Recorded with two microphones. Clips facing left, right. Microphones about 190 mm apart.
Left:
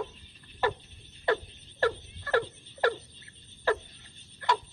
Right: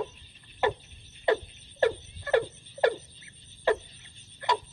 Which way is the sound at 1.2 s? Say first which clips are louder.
Right 3 dB; 20° right (ahead or behind).